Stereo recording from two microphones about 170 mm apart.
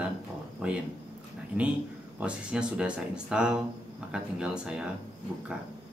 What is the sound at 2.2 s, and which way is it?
A man's voice, 5° right (ahead or behind).